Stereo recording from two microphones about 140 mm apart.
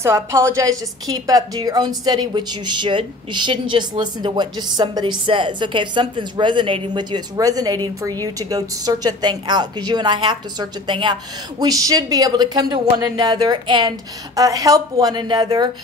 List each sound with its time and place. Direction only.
0.0 s a woman's voice: 20° right (ahead or behind)